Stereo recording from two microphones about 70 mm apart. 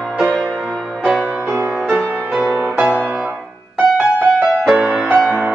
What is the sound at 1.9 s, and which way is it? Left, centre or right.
Music, centre.